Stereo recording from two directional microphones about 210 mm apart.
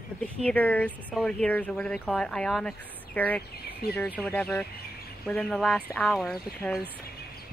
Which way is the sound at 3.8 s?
45° left (ahead or behind).